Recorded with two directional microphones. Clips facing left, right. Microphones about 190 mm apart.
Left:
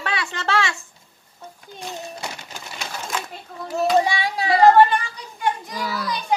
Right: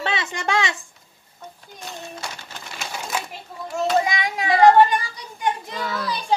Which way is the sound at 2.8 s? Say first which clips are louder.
Right 1 dB; centre (ahead or behind).